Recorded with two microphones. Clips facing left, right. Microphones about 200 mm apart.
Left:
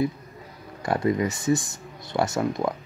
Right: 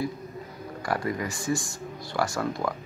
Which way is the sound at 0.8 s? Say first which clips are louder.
Left 6 dB; 25° left (ahead or behind).